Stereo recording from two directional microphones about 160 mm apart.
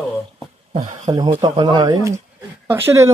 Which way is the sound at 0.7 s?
45° right (ahead or behind).